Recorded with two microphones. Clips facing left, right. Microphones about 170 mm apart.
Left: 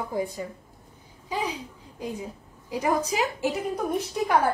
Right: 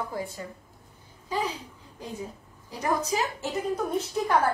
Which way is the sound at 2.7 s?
10° left (ahead or behind).